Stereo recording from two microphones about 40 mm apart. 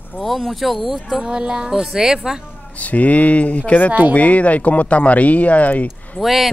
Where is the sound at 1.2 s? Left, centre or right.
Right.